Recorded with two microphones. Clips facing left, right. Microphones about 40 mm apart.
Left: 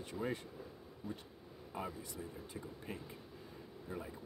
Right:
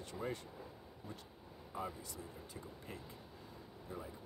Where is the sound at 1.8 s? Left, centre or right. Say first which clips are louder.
Even; left.